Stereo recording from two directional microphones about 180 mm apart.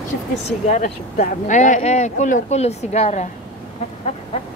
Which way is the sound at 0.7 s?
50° left (ahead or behind).